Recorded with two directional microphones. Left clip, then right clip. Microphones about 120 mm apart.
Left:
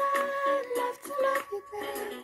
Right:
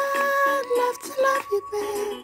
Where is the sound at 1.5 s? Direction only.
30° right (ahead or behind).